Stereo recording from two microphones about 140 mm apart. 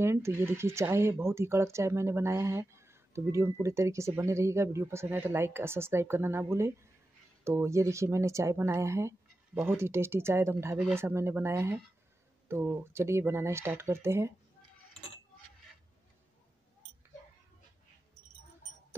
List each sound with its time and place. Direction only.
0.0 s speech: 20° right (ahead or behind)
7.4 s speech: 20° right (ahead or behind)